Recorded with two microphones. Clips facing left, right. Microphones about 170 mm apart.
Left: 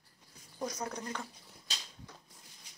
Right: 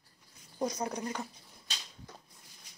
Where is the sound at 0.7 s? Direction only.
20° right (ahead or behind).